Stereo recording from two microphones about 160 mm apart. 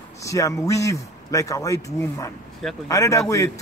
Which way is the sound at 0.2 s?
20° left (ahead or behind).